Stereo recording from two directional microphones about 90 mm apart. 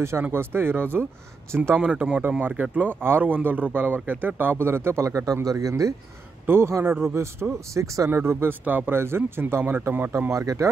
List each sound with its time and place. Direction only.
0.3 s a man's voice: 25° right (ahead or behind)
1.8 s a man's voice: 10° right (ahead or behind)
10.3 s speech: 40° right (ahead or behind)